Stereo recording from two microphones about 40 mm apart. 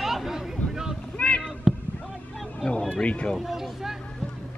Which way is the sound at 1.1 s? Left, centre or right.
Left.